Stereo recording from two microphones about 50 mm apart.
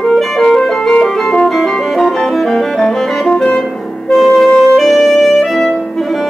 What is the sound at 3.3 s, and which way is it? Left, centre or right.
Music, centre.